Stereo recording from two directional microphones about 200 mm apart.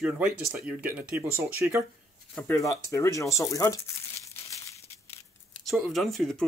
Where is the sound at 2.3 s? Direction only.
10° left (ahead or behind).